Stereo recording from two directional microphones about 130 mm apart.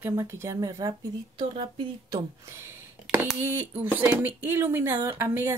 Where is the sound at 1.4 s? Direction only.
40° right (ahead or behind).